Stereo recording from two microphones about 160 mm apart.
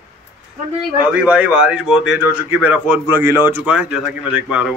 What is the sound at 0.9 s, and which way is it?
Speech, 10° right (ahead or behind).